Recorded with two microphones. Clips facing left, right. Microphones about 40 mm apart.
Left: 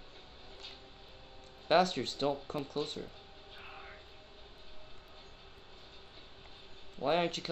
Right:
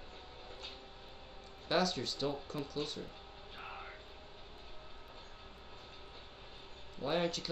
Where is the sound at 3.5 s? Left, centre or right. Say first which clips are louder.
Right 3 dB; centre.